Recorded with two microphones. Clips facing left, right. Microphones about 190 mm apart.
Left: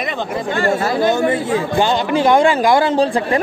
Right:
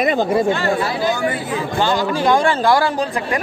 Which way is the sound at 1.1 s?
25° left (ahead or behind).